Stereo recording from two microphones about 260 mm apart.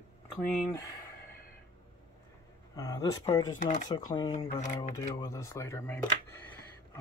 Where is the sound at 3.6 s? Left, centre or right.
Left.